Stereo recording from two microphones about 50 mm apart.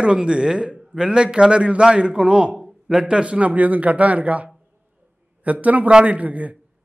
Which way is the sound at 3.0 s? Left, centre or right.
Right.